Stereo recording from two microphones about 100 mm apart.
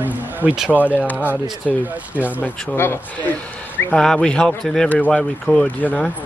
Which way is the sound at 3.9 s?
5° left (ahead or behind).